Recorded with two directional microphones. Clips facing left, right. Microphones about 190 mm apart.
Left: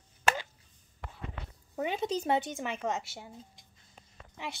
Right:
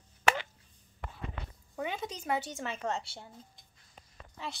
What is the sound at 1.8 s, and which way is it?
Speech, 25° left (ahead or behind).